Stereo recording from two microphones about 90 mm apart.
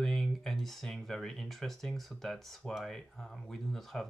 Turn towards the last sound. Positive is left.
turn(degrees=5)  # may be behind; listen again after turning